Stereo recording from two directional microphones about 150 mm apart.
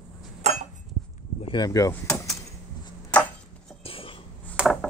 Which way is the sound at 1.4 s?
30° left (ahead or behind).